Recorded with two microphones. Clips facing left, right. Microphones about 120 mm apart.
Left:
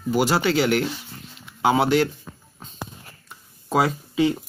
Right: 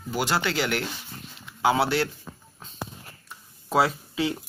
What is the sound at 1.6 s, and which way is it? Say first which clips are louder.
Speech: left 4 dB; 15° left (ahead or behind).